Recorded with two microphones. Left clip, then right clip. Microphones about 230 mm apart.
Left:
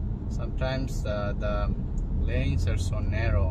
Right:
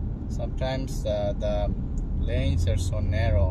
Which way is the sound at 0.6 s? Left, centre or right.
Right.